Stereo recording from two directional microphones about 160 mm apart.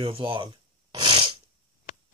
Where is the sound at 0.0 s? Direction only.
35° right (ahead or behind).